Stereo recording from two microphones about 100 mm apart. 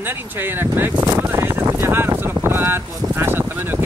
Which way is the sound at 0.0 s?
20° right (ahead or behind).